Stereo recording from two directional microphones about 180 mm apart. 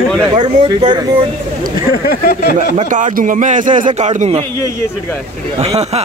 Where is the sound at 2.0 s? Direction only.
55° left (ahead or behind).